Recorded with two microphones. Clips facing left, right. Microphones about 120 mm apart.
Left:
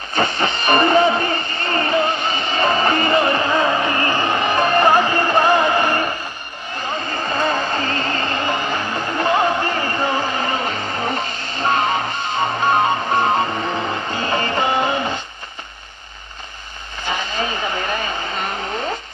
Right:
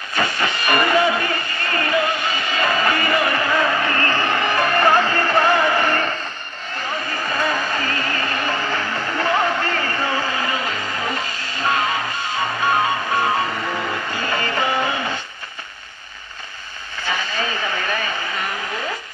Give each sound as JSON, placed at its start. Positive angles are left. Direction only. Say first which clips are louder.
{"t": 0.1, "sound": "music", "louder": "left 2 dB", "side_deg": 25}
{"t": 17.0, "sound": "vehicle", "louder": "left 1 dB", "side_deg": 20}